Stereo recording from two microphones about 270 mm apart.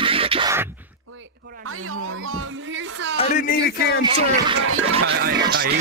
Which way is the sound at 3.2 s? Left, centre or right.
Left.